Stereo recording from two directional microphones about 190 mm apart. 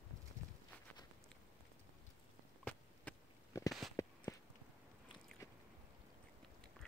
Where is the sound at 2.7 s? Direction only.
5° left (ahead or behind).